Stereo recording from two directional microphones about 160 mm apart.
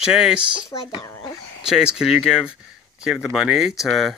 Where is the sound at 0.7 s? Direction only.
25° left (ahead or behind).